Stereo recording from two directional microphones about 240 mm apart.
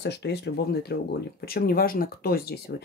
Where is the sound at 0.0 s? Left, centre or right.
Left.